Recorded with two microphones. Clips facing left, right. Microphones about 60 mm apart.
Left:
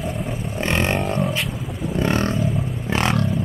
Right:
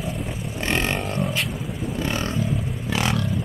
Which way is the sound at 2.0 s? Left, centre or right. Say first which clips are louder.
Left 7 dB; left.